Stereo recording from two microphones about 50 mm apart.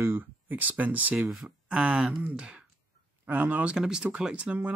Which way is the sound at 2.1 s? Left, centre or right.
Right.